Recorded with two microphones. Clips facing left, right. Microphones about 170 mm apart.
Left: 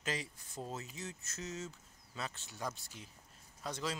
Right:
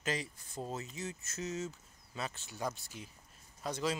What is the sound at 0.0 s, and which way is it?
Speech, centre (ahead or behind).